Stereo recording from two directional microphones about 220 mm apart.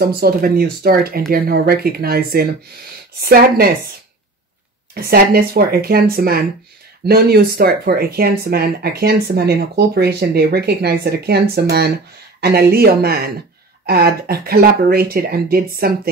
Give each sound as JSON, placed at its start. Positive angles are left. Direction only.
{"t": 0.0, "sound": "speech", "side_deg": -45}
{"t": 4.9, "sound": "speech", "side_deg": -45}